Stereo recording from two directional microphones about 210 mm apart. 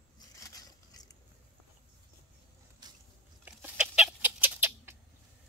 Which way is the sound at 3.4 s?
5° right (ahead or behind).